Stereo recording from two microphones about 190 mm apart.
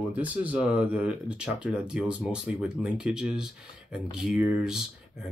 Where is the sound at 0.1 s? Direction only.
10° right (ahead or behind).